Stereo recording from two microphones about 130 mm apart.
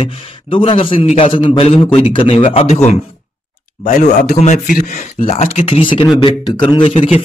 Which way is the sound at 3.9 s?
75° left (ahead or behind).